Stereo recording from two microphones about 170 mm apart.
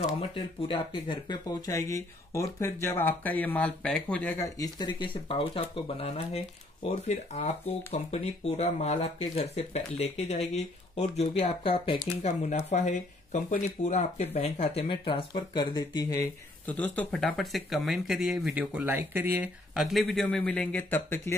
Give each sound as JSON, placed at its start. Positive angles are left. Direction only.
{"t": 0.2, "sound": "speech", "side_deg": 30}
{"t": 4.6, "sound": "speech", "side_deg": 25}
{"t": 16.6, "sound": "speech", "side_deg": 10}